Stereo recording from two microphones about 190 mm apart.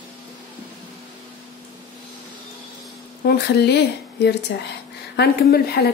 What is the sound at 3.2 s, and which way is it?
A woman's voice, 60° left (ahead or behind).